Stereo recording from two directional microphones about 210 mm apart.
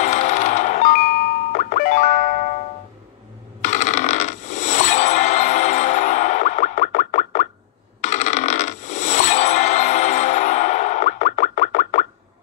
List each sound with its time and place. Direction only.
0.0 s coin: 35° left (ahead or behind)
1.5 s music: 35° left (ahead or behind)
3.6 s coin: 35° left (ahead or behind)